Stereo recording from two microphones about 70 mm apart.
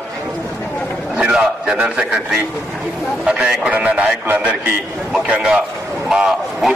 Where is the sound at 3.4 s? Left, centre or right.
Centre.